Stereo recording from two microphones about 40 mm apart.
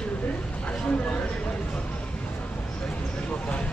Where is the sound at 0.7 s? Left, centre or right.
Left.